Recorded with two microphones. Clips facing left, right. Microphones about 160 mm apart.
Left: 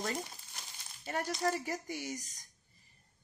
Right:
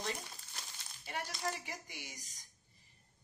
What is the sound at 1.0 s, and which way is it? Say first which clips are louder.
Speech: left 7 dB; 45° left (ahead or behind).